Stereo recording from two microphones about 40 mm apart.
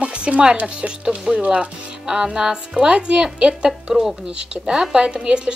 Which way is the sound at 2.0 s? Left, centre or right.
Centre.